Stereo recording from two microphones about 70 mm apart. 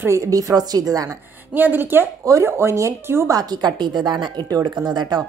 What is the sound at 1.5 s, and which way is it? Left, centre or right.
Speech, right.